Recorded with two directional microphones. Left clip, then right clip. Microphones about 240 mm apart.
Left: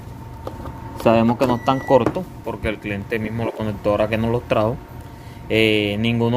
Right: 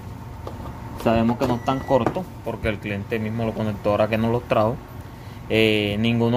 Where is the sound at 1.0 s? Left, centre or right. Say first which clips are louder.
Left 5 dB; left.